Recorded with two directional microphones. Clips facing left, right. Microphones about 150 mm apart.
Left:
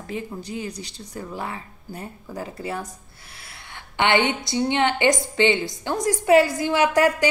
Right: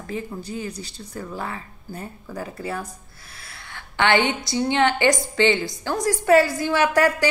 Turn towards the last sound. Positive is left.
turn(degrees=20)  # may be behind; listen again after turning